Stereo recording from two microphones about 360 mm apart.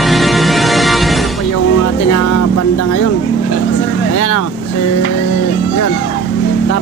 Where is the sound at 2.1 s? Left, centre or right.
Left.